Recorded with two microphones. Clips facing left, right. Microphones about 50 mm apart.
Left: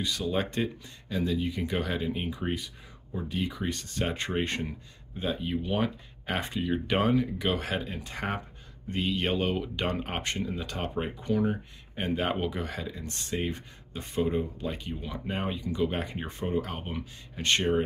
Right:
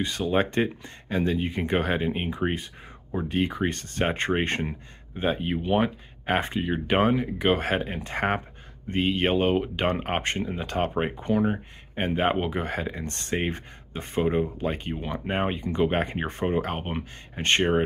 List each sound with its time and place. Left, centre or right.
0.0 s speech: right